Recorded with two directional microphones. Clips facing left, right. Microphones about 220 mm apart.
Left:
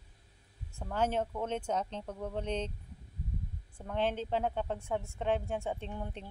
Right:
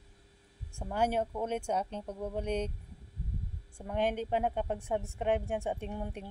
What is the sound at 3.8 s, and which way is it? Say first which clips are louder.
A woman's voice: right 1 dB; 15° right (ahead or behind).